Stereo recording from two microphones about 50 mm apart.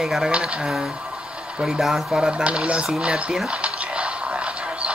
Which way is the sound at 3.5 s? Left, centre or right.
Right.